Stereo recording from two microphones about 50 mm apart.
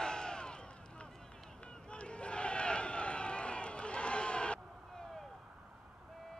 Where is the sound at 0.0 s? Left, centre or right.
Centre.